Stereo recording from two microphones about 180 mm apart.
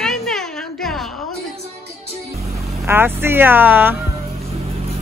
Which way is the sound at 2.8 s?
10° right (ahead or behind).